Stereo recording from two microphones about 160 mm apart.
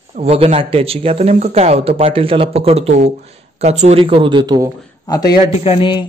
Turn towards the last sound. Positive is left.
turn(degrees=30)  # may be behind; listen again after turning